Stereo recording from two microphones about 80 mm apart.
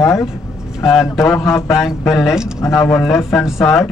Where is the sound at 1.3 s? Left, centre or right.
Left.